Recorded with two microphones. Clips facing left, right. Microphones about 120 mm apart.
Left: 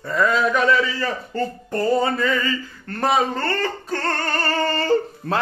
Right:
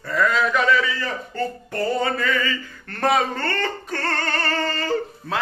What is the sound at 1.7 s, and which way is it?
Speech, 25° left (ahead or behind).